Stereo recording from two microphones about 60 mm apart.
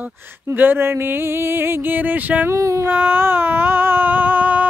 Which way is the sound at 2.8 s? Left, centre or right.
Right.